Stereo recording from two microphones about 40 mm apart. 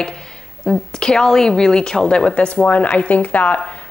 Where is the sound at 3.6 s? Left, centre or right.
Left.